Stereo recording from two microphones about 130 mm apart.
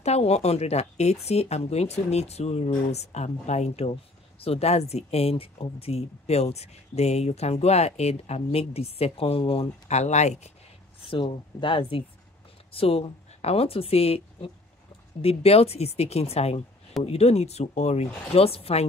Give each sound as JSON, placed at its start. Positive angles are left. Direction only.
{"t": 0.0, "sound": "speech", "side_deg": 55}
{"t": 11.1, "sound": "speech", "side_deg": 40}